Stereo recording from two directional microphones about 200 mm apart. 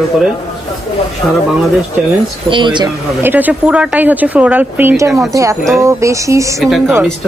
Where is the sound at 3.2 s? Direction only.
10° right (ahead or behind).